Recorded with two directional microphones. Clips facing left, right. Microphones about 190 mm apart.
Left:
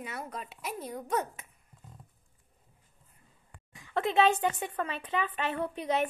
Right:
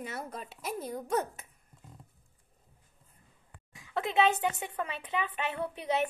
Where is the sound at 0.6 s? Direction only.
40° right (ahead or behind).